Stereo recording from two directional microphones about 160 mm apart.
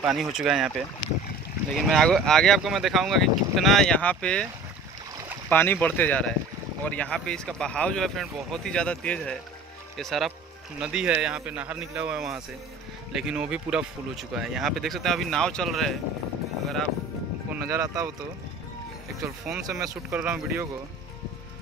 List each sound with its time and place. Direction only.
0.0 s speech: 5° right (ahead or behind)
5.5 s a man's voice: 10° left (ahead or behind)
17.5 s speech: 15° right (ahead or behind)
19.6 s a man's voice: 20° right (ahead or behind)